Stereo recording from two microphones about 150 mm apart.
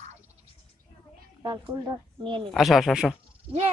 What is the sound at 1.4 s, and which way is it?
Speech, 30° right (ahead or behind).